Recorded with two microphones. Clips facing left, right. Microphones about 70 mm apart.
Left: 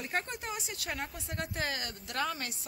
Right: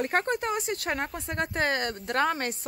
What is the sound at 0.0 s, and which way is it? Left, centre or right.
Speech, right.